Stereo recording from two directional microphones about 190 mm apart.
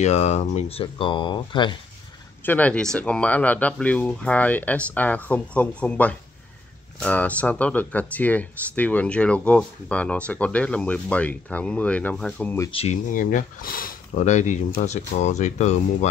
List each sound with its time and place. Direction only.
0.0 s speech: 35° left (ahead or behind)
2.4 s speech: 10° left (ahead or behind)
13.1 s speech: 45° left (ahead or behind)